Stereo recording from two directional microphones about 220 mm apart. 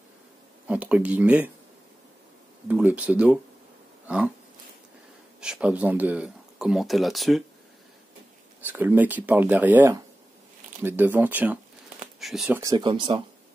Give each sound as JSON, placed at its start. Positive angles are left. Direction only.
{"t": 0.7, "sound": "speech", "side_deg": -5}
{"t": 2.7, "sound": "speech", "side_deg": -5}
{"t": 5.4, "sound": "speech", "side_deg": -5}
{"t": 8.6, "sound": "speech", "side_deg": -10}
{"t": 12.5, "sound": "speech", "side_deg": -15}